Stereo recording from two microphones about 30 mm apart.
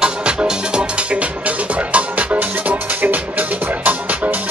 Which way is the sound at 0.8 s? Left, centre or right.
Right.